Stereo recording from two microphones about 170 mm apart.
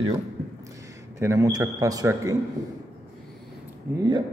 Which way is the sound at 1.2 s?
20° right (ahead or behind).